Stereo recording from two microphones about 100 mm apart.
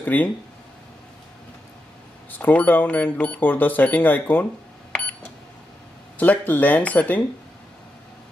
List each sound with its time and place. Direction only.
0.0 s speech: 15° left (ahead or behind)
2.3 s speech: 15° left (ahead or behind)
4.9 s a sound: 15° left (ahead or behind)
6.1 s speech: 15° left (ahead or behind)